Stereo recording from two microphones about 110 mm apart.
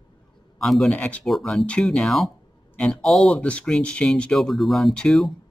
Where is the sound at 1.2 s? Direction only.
Centre (ahead or behind).